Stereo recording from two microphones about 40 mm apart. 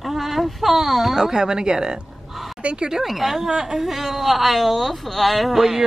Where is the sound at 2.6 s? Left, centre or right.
Right.